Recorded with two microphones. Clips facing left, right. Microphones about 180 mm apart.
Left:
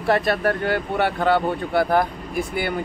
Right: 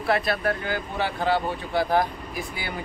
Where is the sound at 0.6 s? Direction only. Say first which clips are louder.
Left 6 dB; 65° left (ahead or behind).